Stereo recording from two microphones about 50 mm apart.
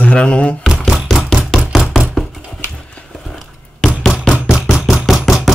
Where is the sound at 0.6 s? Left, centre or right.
Centre.